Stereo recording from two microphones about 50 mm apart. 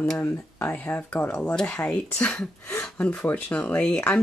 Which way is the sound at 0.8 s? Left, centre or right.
Left.